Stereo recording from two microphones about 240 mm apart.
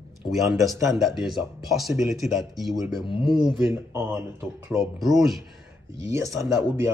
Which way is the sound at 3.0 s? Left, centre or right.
Centre.